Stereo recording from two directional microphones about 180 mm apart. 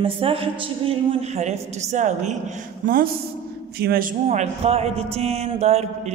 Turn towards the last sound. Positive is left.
turn(degrees=-35)  # may be behind; listen again after turning